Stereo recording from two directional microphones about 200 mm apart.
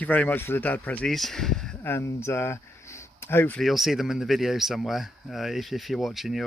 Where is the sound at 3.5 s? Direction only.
Centre (ahead or behind).